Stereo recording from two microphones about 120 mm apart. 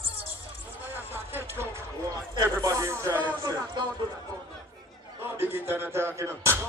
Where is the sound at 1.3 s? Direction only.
20° right (ahead or behind).